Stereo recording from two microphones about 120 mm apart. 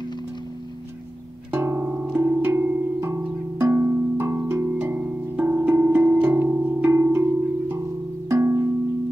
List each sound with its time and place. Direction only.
1.5 s music: 20° right (ahead or behind)